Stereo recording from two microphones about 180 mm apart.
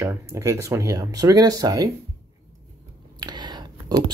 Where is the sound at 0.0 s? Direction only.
15° right (ahead or behind).